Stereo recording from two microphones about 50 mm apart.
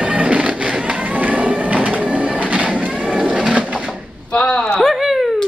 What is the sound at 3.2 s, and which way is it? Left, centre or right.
Bird, right.